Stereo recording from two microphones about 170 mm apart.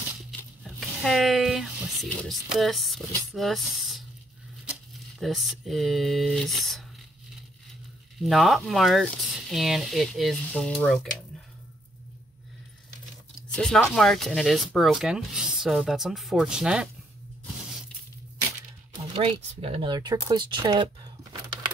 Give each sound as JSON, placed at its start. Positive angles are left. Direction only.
{"t": 0.4, "sound": "a sound", "side_deg": 0}
{"t": 5.2, "sound": "speech", "side_deg": 0}
{"t": 8.2, "sound": "speech", "side_deg": 0}
{"t": 13.6, "sound": "speech", "side_deg": 0}
{"t": 19.1, "sound": "speech", "side_deg": -35}